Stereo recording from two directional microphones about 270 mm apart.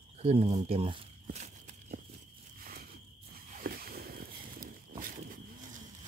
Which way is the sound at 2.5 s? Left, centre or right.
Right.